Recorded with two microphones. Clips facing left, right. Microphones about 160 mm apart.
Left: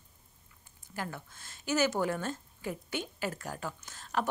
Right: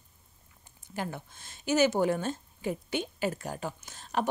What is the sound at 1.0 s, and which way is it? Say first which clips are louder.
Speech: right 3 dB; 20° right (ahead or behind).